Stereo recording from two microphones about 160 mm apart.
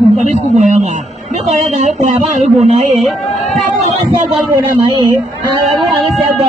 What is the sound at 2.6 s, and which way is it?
Speech, 45° right (ahead or behind).